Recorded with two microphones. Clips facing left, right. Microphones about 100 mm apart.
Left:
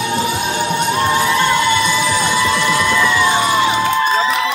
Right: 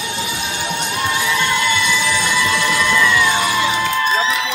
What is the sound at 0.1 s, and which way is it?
Music, 45° left (ahead or behind).